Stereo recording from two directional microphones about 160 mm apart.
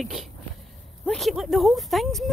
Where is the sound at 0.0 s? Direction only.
Centre (ahead or behind).